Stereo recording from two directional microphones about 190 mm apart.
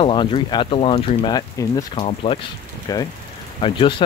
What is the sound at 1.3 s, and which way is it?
Speech, 20° left (ahead or behind).